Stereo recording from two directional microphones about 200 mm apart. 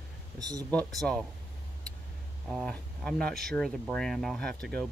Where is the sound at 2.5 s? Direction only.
Centre (ahead or behind).